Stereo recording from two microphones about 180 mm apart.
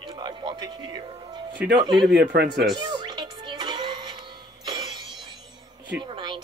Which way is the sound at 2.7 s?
25° right (ahead or behind).